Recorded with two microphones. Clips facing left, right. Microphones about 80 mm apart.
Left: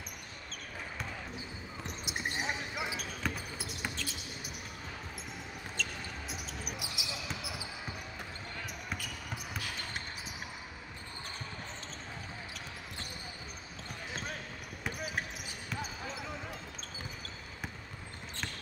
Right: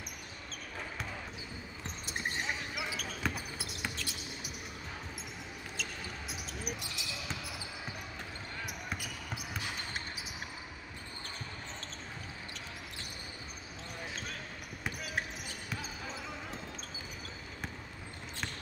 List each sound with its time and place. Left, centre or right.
2.0 s basketball bounce: centre
2.8 s basketball bounce: left
3.2 s basketball bounce: centre
5.8 s basketball bounce: centre
8.6 s a sound: centre